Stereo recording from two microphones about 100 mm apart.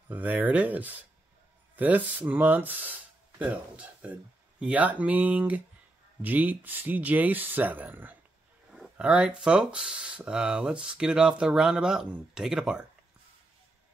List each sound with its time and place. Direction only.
0.1 s speech: 15° right (ahead or behind)